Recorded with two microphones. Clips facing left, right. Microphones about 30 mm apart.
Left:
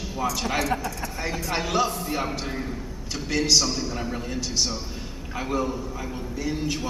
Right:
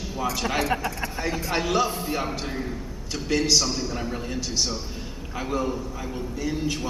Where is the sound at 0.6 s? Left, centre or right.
Right.